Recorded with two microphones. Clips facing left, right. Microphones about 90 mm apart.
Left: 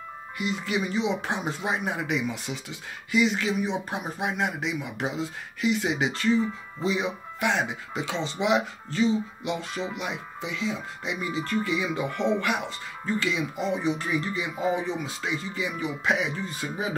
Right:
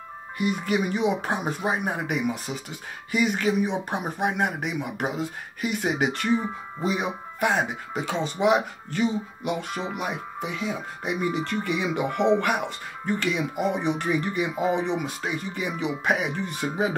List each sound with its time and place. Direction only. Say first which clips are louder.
0.4 s speech: right 4 dB; 50° right (ahead or behind)
1.6 s speech: right 2 dB; 40° right (ahead or behind); by 16.9 s 65° right (ahead or behind)